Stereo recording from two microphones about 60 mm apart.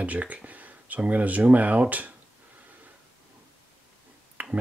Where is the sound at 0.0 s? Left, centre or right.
Right.